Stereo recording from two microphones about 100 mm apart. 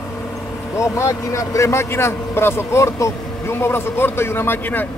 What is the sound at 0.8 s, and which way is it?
Speech, 30° left (ahead or behind).